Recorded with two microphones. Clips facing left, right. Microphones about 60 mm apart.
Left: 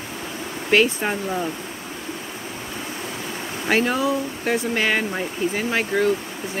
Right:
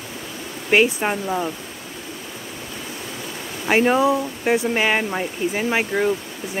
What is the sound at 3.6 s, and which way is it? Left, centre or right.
Speech, right.